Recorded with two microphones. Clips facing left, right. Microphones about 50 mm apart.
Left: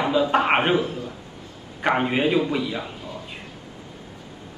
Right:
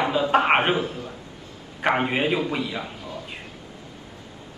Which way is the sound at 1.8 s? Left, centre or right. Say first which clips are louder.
Left 1 dB; centre.